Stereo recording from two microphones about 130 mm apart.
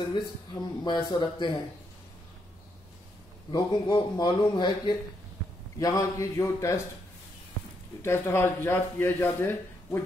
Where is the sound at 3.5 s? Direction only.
35° left (ahead or behind).